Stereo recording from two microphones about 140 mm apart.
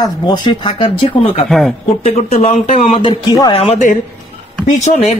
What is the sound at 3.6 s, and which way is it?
A woman's voice, 55° left (ahead or behind).